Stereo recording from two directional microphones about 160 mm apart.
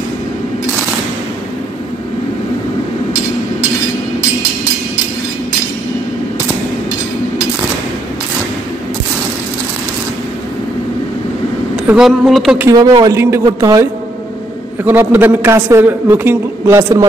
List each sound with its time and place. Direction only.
11.9 s speech: centre (ahead or behind)
12.6 s speech: 25° right (ahead or behind)
14.9 s a man's voice: 10° right (ahead or behind)